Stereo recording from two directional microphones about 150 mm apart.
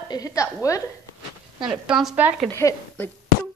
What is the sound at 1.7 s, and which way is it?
Speech, 5° right (ahead or behind).